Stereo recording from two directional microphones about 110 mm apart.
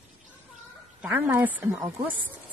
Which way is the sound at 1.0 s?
15° right (ahead or behind).